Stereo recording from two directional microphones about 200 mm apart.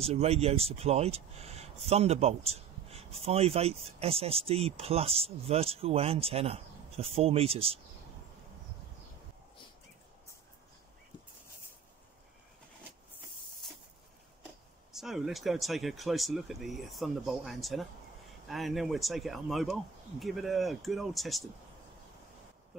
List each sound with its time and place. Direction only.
0.0 s speech: 30° right (ahead or behind)
14.9 s speech: centre (ahead or behind)